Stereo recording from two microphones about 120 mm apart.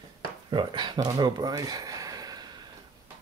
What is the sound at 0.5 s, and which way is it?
Speech, 40° right (ahead or behind).